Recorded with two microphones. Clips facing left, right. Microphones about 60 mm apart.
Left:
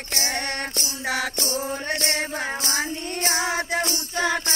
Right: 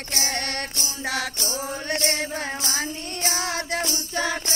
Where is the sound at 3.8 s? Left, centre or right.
Left.